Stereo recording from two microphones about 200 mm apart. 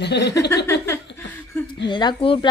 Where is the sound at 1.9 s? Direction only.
20° left (ahead or behind).